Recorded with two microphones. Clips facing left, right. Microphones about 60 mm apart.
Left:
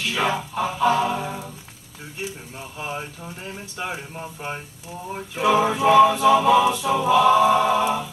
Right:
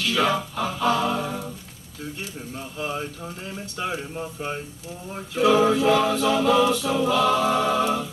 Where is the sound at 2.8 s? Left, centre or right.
Left.